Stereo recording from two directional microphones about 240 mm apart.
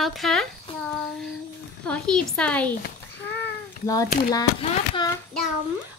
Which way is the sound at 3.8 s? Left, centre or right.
Centre.